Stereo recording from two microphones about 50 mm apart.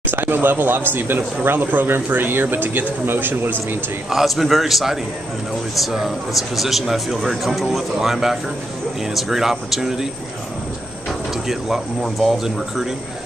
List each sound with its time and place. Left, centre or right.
0.0 s speech: right
4.1 s speech: centre
11.4 s speech: centre